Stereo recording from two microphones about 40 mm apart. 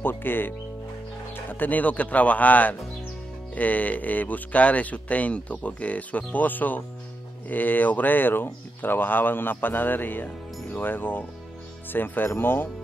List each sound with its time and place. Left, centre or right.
0.0 s speech: left